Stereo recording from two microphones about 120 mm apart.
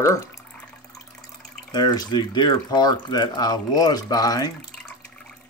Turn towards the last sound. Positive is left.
turn(degrees=30)  # may be behind; listen again after turning